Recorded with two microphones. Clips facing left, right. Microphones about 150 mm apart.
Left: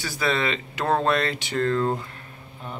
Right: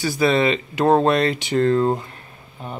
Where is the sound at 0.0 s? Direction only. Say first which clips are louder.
Right 7 dB; 15° right (ahead or behind).